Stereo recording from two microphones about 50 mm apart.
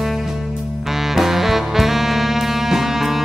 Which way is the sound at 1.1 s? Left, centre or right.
Centre.